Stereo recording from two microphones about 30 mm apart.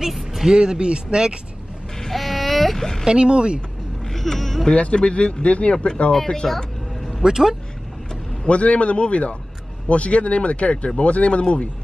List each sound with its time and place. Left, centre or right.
0.0 s a sound: centre
0.5 s speech: right
2.1 s a sound: centre
3.1 s speech: right
4.1 s a sound: centre
4.9 s speech: left
6.4 s speech: centre
7.2 s speech: centre
8.5 s speech: left